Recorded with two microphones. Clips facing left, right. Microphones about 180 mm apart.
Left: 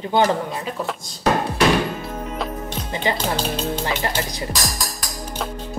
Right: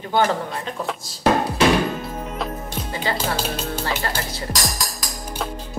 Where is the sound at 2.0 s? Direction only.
Centre (ahead or behind).